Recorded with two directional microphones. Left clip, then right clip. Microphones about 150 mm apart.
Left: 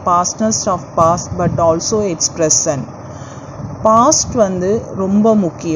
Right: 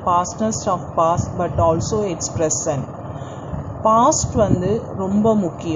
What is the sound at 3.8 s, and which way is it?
Speech, 20° left (ahead or behind).